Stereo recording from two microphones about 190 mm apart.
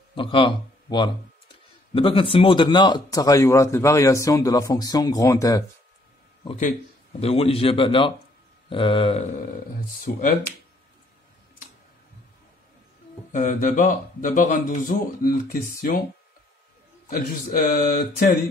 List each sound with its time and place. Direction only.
0.1 s speech: 25° left (ahead or behind)
6.4 s speech: 35° left (ahead or behind)
10.0 s speech: 45° left (ahead or behind)
13.3 s speech: 45° left (ahead or behind)
17.1 s speech: 50° left (ahead or behind)